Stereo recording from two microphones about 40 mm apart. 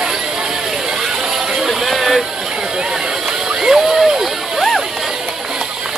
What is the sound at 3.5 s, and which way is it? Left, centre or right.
Music, centre.